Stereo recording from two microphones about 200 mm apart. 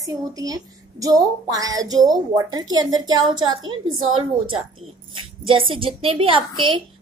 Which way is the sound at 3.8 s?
90° right.